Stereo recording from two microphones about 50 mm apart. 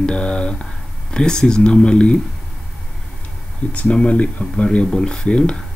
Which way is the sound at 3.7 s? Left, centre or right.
Left.